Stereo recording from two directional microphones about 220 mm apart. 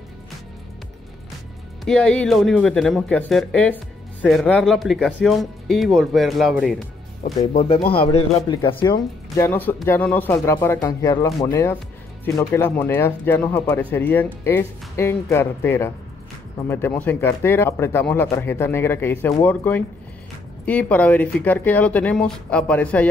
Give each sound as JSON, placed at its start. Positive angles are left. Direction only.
{"t": 1.9, "sound": "speech", "side_deg": 5}
{"t": 7.5, "sound": "speech", "side_deg": 25}
{"t": 9.5, "sound": "speech", "side_deg": 10}